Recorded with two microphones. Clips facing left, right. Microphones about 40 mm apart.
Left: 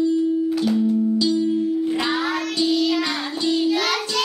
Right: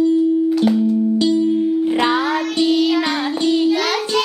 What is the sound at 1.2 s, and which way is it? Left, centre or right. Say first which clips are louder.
Music: right 4 dB; right.